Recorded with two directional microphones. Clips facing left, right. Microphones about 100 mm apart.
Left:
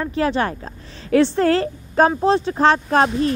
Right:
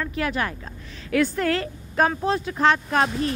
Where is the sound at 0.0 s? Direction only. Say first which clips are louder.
Left 6 dB; 30° left (ahead or behind).